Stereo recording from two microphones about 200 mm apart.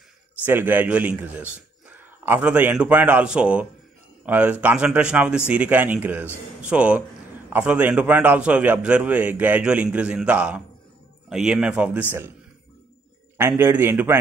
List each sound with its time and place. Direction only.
0.5 s a man's voice: 10° right (ahead or behind)
13.4 s a man's voice: 10° right (ahead or behind)